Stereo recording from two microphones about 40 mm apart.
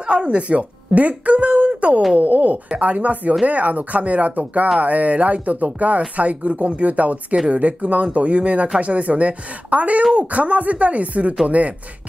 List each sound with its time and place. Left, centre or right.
0.0 s speech: right